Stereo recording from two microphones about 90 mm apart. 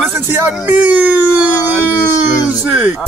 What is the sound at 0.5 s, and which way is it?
Speech, 15° right (ahead or behind).